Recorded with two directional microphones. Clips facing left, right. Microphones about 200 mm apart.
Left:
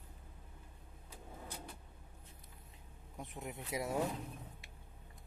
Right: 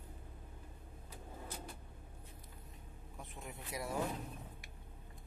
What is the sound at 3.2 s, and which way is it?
Speech, 20° left (ahead or behind).